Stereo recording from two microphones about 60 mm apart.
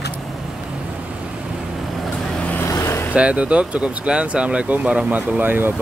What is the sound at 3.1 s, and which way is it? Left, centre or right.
Speech, right.